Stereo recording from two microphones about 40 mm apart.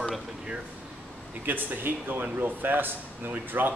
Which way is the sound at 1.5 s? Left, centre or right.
Right.